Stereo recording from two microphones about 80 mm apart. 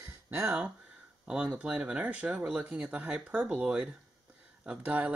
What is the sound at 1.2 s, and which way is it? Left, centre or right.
Speech, centre.